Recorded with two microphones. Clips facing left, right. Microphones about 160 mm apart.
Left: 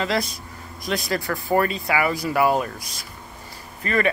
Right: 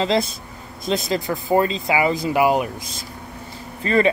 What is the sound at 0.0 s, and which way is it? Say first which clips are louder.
Speech: right 4 dB; 25° right (ahead or behind).